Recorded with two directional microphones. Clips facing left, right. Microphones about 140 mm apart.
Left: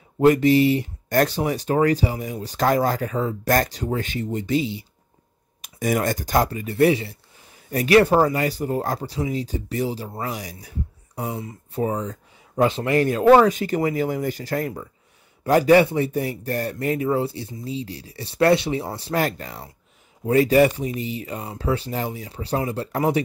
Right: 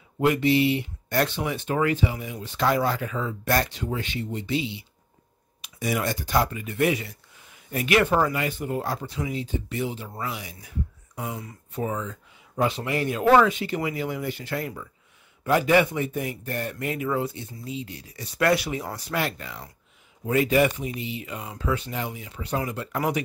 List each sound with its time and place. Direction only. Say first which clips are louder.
0.2 s speech: left 5 dB; 40° left (ahead or behind)
12.7 s speech: left 7 dB; 45° left (ahead or behind); by 19.1 s 30° left (ahead or behind)
19.1 s speech: left 5 dB; 40° left (ahead or behind)